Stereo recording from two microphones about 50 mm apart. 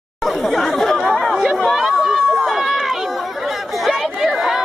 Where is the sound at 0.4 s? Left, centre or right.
Centre.